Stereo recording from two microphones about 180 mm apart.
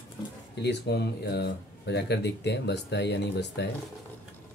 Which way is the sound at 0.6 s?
70° left (ahead or behind).